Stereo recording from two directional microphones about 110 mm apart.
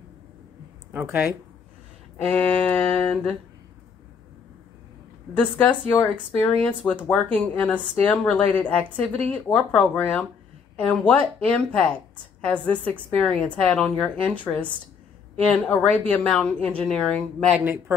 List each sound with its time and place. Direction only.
2.2 s a woman's voice: 10° left (ahead or behind)
5.3 s a woman's voice: 15° left (ahead or behind)